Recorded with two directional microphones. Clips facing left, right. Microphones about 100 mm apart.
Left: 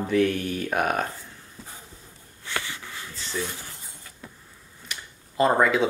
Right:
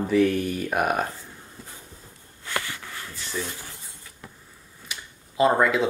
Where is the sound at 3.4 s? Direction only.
5° right (ahead or behind).